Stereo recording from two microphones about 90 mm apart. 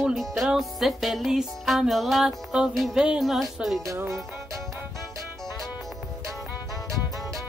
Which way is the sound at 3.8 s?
35° right (ahead or behind).